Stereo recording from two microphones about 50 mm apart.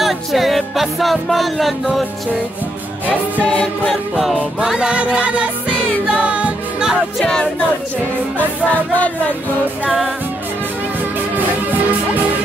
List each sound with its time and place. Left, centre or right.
0.0 s music: centre
3.1 s music: left
3.8 s music: centre
4.6 s music: centre
4.9 s music: right
6.8 s music: centre
8.4 s music: left